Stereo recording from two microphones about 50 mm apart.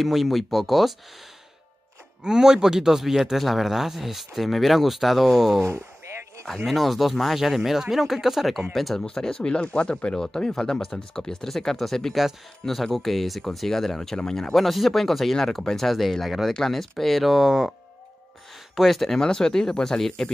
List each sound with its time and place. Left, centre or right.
0.0 s speech: centre
2.2 s speech: centre
5.6 s speech: right
6.4 s speech: centre
18.8 s speech: centre